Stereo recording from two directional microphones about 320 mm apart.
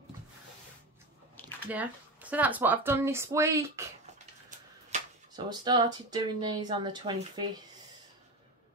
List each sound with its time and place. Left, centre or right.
1.7 s speech: centre